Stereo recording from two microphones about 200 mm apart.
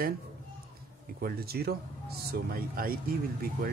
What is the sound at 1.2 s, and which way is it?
Speech, 50° right (ahead or behind).